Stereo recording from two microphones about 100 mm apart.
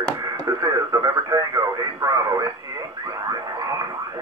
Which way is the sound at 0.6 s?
40° right (ahead or behind).